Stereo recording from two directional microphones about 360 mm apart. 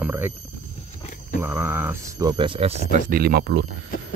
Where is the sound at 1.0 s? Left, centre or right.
Left.